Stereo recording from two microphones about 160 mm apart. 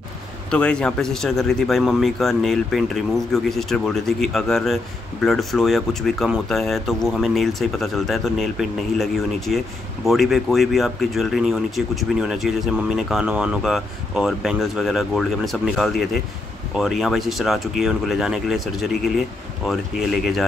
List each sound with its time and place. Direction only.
0.5 s speech: 5° left (ahead or behind)